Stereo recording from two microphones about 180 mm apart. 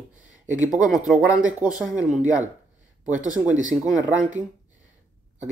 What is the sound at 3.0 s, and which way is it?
Speech, 45° right (ahead or behind).